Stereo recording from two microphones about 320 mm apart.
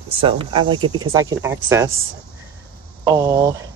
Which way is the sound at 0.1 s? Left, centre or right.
Centre.